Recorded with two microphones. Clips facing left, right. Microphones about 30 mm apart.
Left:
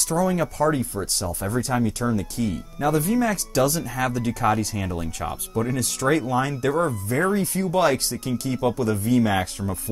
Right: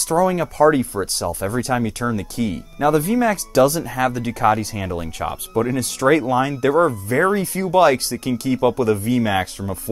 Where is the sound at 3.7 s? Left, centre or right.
Right.